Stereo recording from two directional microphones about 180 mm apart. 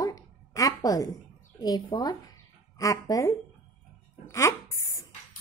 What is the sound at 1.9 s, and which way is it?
A woman's voice, 25° left (ahead or behind).